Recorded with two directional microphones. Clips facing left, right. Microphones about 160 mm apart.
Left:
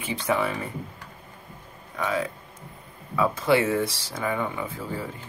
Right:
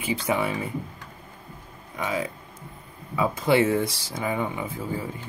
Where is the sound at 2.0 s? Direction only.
15° right (ahead or behind).